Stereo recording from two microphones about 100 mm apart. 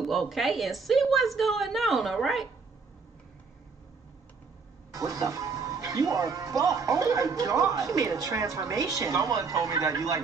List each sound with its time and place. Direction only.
0.0 s a woman's voice: centre (ahead or behind)
4.9 s speech: 35° right (ahead or behind)